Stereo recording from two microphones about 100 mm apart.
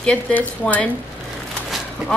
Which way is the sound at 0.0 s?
15° left (ahead or behind).